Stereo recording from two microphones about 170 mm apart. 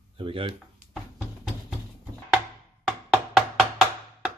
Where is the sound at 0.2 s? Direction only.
30° right (ahead or behind).